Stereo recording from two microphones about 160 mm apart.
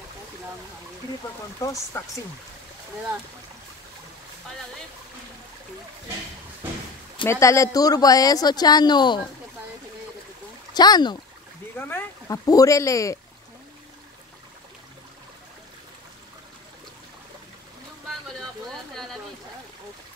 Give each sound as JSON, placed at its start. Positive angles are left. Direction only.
{"t": 1.6, "sound": "a woman's voice", "side_deg": 20}
{"t": 7.2, "sound": "a woman's voice", "side_deg": 20}
{"t": 10.7, "sound": "a woman's voice", "side_deg": 25}